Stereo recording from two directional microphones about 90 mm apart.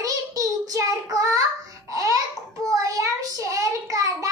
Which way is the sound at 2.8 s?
40° right (ahead or behind).